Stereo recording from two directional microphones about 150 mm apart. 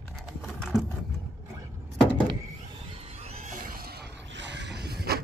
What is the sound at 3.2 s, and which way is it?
Music, 55° right (ahead or behind).